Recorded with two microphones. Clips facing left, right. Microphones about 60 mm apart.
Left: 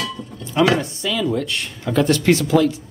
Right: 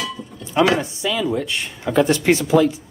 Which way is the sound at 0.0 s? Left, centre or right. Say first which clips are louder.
Left 1 dB; centre.